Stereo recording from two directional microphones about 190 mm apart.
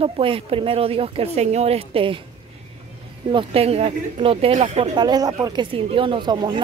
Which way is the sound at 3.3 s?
30° right (ahead or behind).